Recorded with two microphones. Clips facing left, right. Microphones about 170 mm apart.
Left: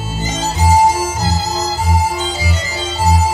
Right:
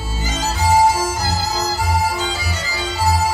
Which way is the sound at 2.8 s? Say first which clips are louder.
Left 2 dB; 20° left (ahead or behind).